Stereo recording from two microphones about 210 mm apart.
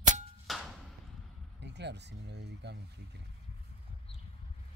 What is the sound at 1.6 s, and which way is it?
Speech, 55° right (ahead or behind).